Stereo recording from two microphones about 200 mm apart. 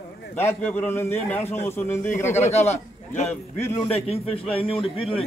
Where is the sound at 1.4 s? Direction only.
35° left (ahead or behind).